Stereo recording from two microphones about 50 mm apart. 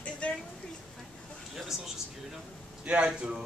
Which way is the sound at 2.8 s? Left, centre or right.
Right.